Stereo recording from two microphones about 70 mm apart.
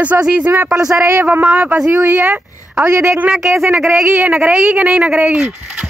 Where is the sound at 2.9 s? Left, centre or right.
Right.